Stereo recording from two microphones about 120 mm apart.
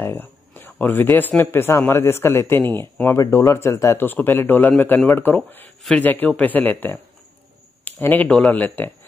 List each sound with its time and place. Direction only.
0.0 s speech: 20° left (ahead or behind)
7.8 s a sound: 15° left (ahead or behind)
8.3 s speech: 10° left (ahead or behind)